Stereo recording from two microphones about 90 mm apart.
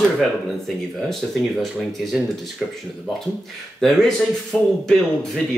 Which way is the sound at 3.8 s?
5° left (ahead or behind).